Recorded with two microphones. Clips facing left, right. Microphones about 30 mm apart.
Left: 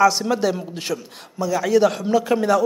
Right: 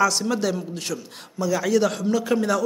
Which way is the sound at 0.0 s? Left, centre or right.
Centre.